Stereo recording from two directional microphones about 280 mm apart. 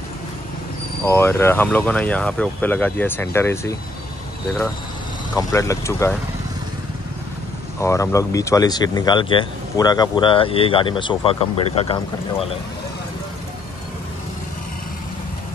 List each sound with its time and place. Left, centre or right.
1.0 s speech: centre
5.3 s speech: centre
7.8 s speech: centre